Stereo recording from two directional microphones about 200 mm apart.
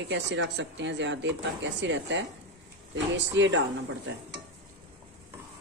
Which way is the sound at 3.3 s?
65° right (ahead or behind).